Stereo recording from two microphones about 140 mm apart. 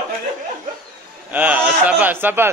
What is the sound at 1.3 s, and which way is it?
Speech, 10° right (ahead or behind).